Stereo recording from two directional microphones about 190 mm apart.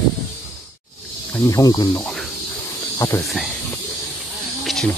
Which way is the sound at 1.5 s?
20° left (ahead or behind).